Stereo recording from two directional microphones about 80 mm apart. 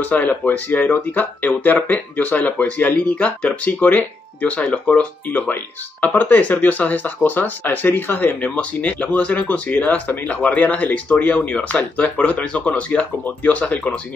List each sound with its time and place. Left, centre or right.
0.0 s speech: left